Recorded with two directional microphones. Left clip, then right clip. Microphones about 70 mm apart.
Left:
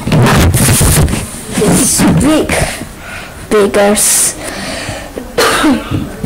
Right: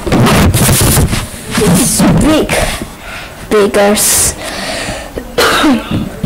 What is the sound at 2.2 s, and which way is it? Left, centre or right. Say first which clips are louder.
Speech: right 1 dB; centre.